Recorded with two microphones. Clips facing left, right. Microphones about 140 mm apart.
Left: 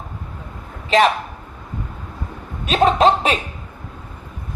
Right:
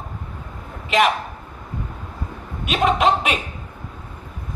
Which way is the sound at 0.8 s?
35° left (ahead or behind).